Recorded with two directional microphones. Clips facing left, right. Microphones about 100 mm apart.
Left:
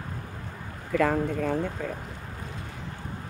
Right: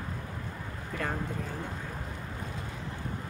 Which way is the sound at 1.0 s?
90° left.